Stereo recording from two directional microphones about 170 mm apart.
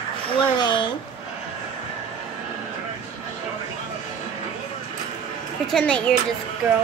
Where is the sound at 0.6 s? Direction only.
25° left (ahead or behind).